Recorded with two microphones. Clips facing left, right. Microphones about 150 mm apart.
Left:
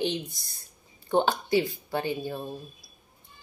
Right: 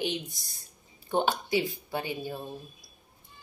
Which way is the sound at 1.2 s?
15° right (ahead or behind).